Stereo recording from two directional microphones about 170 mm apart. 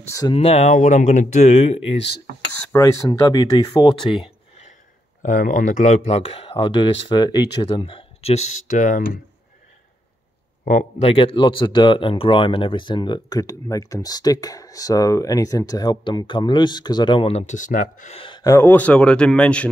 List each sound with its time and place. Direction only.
0.3 s speech: 35° left (ahead or behind)
2.7 s speech: 20° left (ahead or behind)
5.2 s speech: 50° left (ahead or behind)
10.6 s speech: 40° left (ahead or behind)
18.2 s a man's voice: 25° left (ahead or behind); by 19.7 s 5° left (ahead or behind)